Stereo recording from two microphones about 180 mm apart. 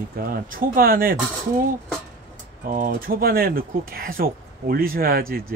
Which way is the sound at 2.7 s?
50° right (ahead or behind).